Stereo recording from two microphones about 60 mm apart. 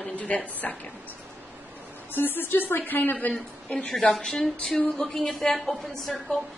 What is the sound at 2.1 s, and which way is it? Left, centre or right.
A woman's voice, left.